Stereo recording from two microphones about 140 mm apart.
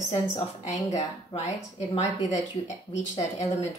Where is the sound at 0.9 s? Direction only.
50° left (ahead or behind).